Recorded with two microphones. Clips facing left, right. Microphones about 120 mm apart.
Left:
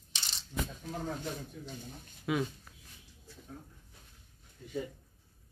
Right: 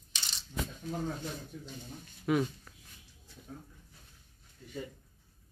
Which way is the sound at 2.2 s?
Centre (ahead or behind).